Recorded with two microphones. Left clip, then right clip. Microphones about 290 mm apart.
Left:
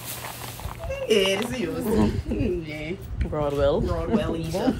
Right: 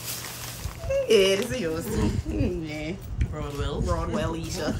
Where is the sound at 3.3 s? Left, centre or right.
Centre.